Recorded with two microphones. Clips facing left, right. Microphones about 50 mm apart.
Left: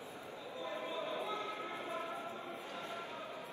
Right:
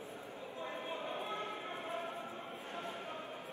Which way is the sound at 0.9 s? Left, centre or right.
Right.